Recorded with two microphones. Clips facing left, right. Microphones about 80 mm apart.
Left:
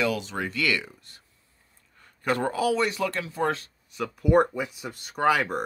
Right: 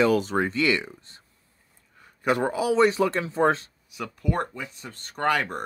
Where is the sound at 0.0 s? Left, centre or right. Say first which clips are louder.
Right 6 dB; right.